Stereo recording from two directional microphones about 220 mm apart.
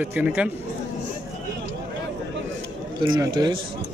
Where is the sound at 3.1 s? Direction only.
20° right (ahead or behind).